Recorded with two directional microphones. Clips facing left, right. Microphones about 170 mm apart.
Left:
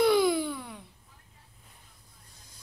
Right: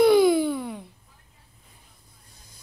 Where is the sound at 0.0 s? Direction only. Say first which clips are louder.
Right 6 dB; 10° right (ahead or behind).